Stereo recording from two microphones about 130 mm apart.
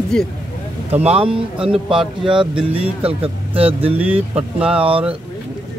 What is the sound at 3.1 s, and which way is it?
Speech, 45° right (ahead or behind).